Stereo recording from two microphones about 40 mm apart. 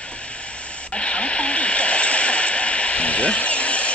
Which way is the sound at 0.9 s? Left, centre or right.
Left.